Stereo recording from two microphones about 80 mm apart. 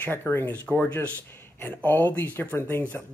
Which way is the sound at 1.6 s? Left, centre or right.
Left.